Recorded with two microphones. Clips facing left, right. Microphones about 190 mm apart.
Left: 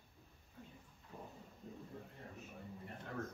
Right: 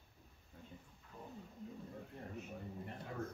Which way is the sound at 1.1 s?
35° left (ahead or behind).